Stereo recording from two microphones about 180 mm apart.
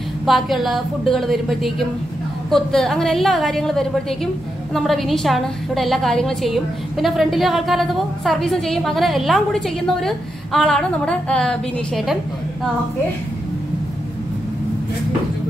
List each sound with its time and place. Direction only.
0.3 s a woman's voice: centre (ahead or behind)